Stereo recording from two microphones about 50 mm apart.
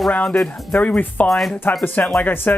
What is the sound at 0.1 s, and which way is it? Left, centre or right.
Speech, left.